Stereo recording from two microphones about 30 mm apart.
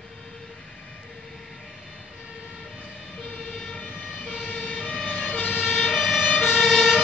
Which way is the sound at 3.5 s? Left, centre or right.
Centre.